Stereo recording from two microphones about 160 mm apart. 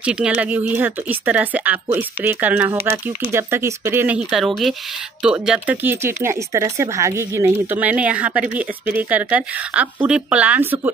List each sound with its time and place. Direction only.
0.0 s speech: 5° right (ahead or behind)
4.3 s speech: centre (ahead or behind)